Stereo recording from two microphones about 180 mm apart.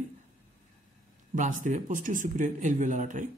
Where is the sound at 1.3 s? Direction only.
45° right (ahead or behind).